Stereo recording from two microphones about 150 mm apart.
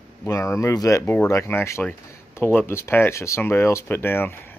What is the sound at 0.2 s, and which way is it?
Speech, 20° left (ahead or behind).